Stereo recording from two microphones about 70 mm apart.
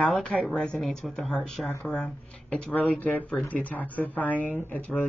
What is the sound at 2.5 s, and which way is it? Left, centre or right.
Speech, centre.